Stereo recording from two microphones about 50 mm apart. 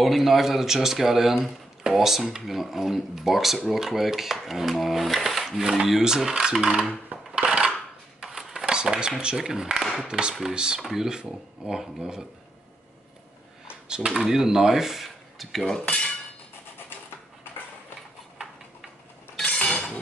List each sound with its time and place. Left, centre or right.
0.0 s speech: centre
7.1 s a sound: right
7.4 s dishes: centre
8.2 s a sound: centre
8.7 s speech: centre
10.8 s speech: centre
13.8 s speech: centre
15.8 s cutlery: left
19.4 s chink: centre